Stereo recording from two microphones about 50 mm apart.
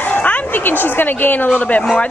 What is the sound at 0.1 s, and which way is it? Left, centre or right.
Dog, left.